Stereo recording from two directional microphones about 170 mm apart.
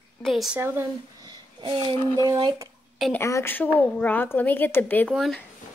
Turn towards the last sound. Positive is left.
turn(degrees=0)  # may be behind; listen again after turning